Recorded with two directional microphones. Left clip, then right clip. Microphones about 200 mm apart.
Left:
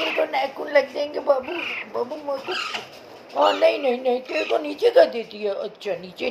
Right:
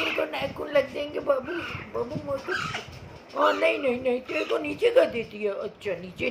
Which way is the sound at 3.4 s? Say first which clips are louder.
Left 5 dB; 25° right (ahead or behind).